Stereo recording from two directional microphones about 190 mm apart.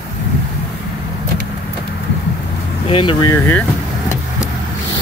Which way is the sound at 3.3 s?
10° left (ahead or behind).